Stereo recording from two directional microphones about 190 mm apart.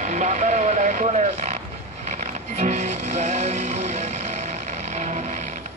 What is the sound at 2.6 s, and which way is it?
Music, 40° right (ahead or behind).